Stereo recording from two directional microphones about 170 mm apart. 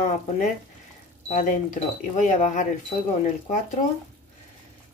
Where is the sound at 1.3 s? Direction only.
45° left (ahead or behind).